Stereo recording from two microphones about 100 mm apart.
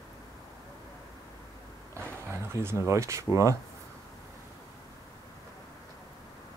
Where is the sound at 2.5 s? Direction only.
25° right (ahead or behind).